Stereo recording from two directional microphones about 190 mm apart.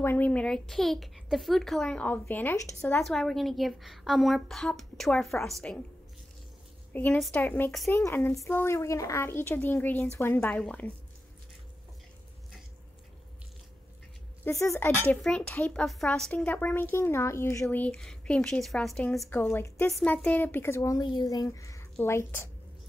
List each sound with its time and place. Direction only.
0.0 s speech: 10° left (ahead or behind)
3.0 s speech: centre (ahead or behind)
6.9 s speech: 10° left (ahead or behind)
8.0 s speech: 10° left (ahead or behind)
14.4 s speech: 15° left (ahead or behind)